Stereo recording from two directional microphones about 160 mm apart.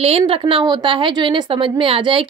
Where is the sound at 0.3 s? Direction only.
30° right (ahead or behind).